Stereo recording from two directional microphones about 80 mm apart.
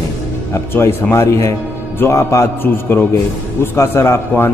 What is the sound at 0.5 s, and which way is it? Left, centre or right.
A man's voice, left.